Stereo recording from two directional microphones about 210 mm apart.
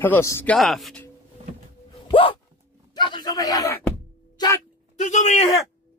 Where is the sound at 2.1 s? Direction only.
25° left (ahead or behind).